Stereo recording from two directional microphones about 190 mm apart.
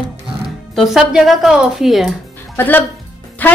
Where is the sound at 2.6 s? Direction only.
10° left (ahead or behind).